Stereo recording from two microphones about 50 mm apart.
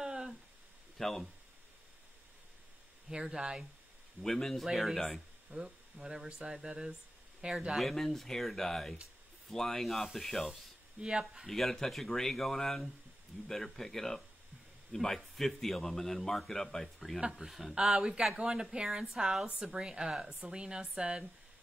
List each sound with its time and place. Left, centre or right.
0.0 s a sound: centre
0.9 s speech: centre
3.1 s a woman's voice: centre
4.2 s a man's voice: centre
5.5 s speech: right
5.9 s a woman's voice: centre
7.8 s a man's voice: centre
11.0 s a woman's voice: centre
11.4 s a man's voice: centre
17.2 s a woman's voice: centre
17.5 s a woman's voice: centre